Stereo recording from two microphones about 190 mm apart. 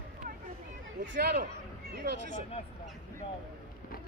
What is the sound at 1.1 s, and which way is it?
Speech, 50° right (ahead or behind).